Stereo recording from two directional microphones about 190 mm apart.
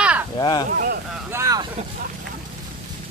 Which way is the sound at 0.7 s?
50° right (ahead or behind).